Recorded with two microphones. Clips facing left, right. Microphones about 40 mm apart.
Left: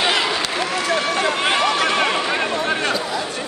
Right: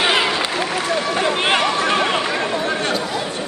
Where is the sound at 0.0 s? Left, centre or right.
Centre.